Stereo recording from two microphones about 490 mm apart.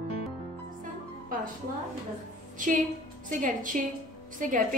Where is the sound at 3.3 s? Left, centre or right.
Centre.